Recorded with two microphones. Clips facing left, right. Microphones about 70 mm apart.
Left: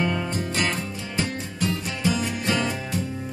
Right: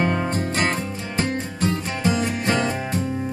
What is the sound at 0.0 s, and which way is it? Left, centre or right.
Music, right.